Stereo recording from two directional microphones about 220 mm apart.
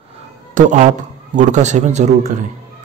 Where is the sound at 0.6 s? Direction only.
35° right (ahead or behind).